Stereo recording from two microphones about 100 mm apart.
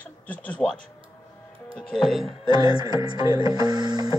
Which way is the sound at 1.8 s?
5° left (ahead or behind).